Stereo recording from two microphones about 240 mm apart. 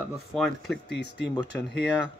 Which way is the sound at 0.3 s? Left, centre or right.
Centre.